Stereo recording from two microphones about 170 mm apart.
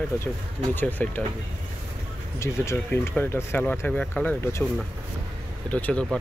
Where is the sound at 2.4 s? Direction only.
15° left (ahead or behind).